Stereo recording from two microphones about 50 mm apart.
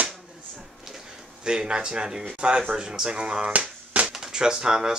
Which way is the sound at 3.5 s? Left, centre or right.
Right.